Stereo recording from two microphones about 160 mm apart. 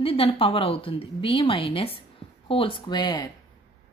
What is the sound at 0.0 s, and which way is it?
A woman's voice, 35° left (ahead or behind).